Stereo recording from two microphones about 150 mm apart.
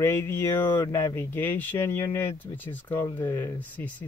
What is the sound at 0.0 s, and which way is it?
Speech, 15° left (ahead or behind).